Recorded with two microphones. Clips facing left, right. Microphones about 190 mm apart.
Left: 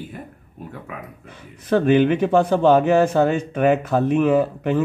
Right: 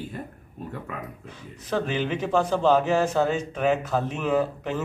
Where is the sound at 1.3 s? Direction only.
60° left (ahead or behind).